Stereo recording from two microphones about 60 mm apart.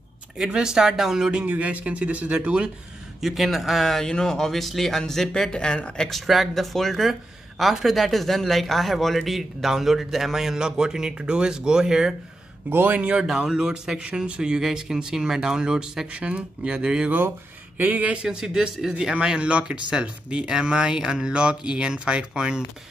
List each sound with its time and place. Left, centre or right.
0.5 s speech: centre
1.4 s speech: right
3.2 s speech: centre
6.0 s speech: centre
12.6 s a man's voice: right
13.0 s speech: centre
17.7 s speech: right
18.1 s speech: centre